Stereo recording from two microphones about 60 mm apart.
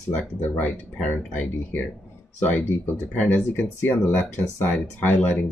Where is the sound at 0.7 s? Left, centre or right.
Left.